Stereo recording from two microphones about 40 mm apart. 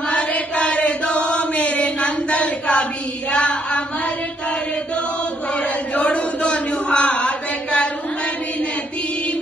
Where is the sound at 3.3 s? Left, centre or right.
Left.